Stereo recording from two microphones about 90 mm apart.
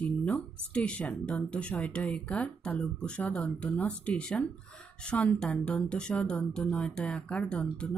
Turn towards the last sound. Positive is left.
turn(degrees=10)  # may be behind; listen again after turning